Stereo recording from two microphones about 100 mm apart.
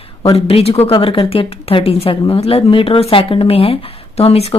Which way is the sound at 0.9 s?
60° left (ahead or behind).